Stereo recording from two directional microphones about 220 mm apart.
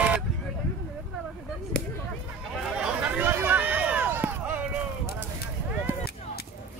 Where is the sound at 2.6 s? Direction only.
5° right (ahead or behind).